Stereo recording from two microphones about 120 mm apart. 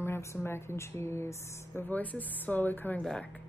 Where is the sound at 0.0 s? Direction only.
20° left (ahead or behind).